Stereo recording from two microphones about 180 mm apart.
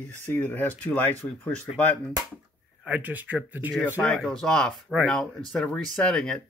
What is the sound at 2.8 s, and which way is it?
Speech, 10° right (ahead or behind).